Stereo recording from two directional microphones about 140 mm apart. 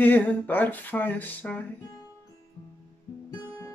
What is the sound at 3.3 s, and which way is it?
Guitar, 25° left (ahead or behind).